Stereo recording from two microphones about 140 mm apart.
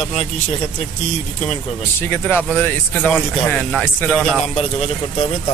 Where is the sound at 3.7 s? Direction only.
Centre (ahead or behind).